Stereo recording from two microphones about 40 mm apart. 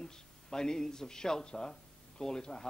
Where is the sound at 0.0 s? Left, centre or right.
Centre.